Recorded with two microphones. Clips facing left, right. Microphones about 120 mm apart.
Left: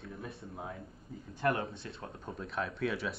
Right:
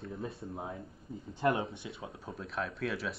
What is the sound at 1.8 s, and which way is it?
Speech, 5° right (ahead or behind).